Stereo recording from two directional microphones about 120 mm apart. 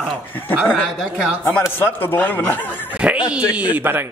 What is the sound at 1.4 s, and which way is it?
Speech, 15° left (ahead or behind).